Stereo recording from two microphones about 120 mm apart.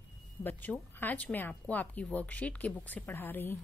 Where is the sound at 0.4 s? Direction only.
15° left (ahead or behind).